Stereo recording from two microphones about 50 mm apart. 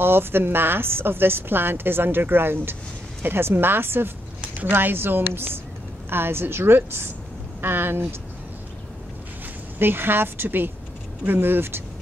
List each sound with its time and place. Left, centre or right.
0.0 s a woman's voice: right
9.8 s a woman's voice: right